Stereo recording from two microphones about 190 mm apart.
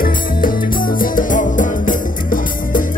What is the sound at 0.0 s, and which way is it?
Music, 45° left (ahead or behind).